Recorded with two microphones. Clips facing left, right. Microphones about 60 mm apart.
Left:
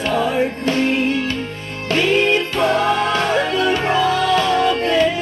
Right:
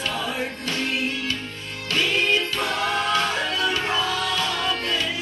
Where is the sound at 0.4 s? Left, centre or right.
Left.